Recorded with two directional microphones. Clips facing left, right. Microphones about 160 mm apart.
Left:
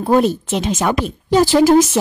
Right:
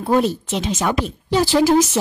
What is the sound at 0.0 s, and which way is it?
A woman's voice, 50° left (ahead or behind).